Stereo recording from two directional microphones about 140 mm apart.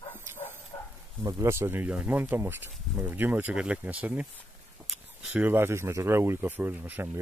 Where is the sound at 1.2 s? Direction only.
20° right (ahead or behind).